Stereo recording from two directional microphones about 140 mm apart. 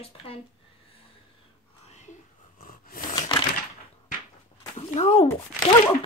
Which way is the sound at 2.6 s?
80° left.